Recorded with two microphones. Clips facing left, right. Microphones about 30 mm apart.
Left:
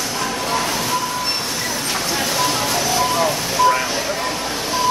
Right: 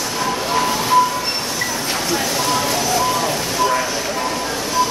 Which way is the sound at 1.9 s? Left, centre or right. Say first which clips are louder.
Even; centre.